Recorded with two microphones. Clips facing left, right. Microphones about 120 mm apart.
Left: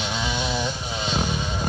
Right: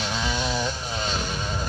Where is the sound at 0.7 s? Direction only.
5° left (ahead or behind).